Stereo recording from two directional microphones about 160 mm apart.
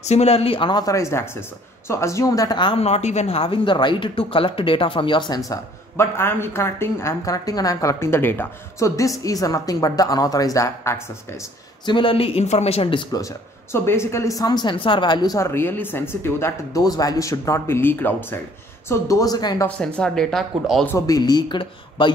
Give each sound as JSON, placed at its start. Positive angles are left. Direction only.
{"t": 0.0, "sound": "speech", "side_deg": 40}
{"t": 5.5, "sound": "a woman's voice", "side_deg": 15}
{"t": 11.8, "sound": "speech", "side_deg": 30}
{"t": 13.1, "sound": "a woman's voice", "side_deg": 20}
{"t": 19.8, "sound": "speech", "side_deg": 5}
{"t": 20.8, "sound": "speech", "side_deg": 15}
{"t": 21.2, "sound": "a woman's voice", "side_deg": 25}